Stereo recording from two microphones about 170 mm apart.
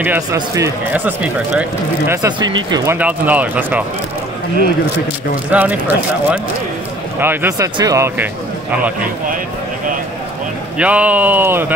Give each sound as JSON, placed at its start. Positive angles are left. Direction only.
{"t": 0.0, "sound": "speech", "side_deg": -15}
{"t": 2.2, "sound": "speech", "side_deg": -25}
{"t": 3.0, "sound": "speech", "side_deg": -10}
{"t": 5.5, "sound": "speech", "side_deg": -10}
{"t": 10.8, "sound": "speech", "side_deg": -10}